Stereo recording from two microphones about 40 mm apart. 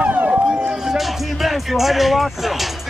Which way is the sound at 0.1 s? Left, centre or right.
Right.